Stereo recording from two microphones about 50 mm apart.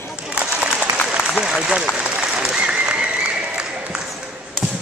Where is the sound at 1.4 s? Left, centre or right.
Centre.